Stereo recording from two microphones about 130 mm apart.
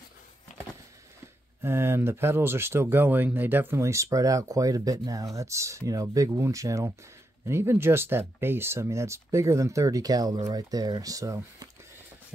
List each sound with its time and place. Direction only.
1.6 s speech: 20° right (ahead or behind)